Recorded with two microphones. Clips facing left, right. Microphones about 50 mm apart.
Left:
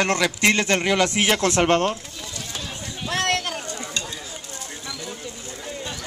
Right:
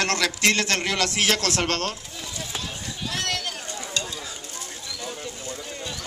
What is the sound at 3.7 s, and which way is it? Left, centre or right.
Stir, left.